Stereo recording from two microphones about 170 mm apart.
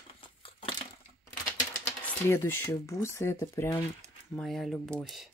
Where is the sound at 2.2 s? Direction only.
15° left (ahead or behind).